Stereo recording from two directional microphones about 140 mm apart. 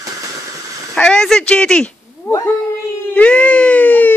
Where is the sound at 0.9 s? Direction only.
5° left (ahead or behind).